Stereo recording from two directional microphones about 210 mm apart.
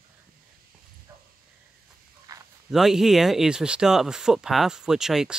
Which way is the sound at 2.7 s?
Centre (ahead or behind).